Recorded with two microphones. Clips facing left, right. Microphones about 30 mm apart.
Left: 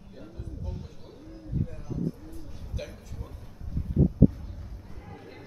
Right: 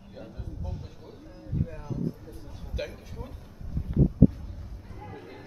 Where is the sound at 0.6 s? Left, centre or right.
Centre.